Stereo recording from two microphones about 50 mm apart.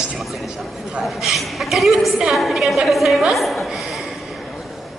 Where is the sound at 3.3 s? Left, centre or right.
Centre.